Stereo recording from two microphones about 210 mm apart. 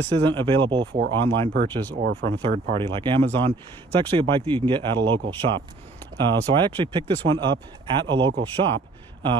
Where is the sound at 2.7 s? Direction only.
25° right (ahead or behind).